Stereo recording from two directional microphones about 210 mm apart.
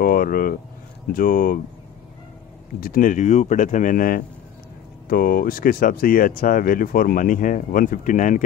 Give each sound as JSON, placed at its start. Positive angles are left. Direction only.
{"t": 0.0, "sound": "speech", "side_deg": 45}
{"t": 2.8, "sound": "speech", "side_deg": 40}